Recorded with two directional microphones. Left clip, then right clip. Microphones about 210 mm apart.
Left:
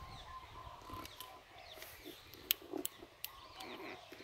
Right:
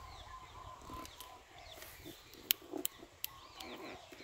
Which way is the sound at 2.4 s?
45° right (ahead or behind).